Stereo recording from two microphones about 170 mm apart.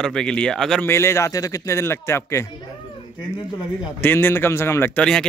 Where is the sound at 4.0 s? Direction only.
10° left (ahead or behind).